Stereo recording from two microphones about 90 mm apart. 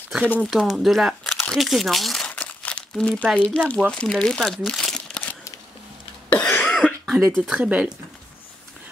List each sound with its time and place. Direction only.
0.2 s speech: 15° left (ahead or behind)
0.5 s speech: 5° right (ahead or behind)
2.2 s crumpling: 20° left (ahead or behind)
3.3 s speech: 15° left (ahead or behind)
4.0 s crumpling: 10° left (ahead or behind)
6.3 s cough: 20° left (ahead or behind)
6.6 s cough: 10° left (ahead or behind)
7.5 s speech: 15° right (ahead or behind)